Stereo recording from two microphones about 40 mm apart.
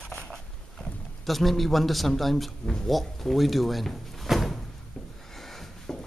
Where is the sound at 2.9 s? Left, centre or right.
Centre.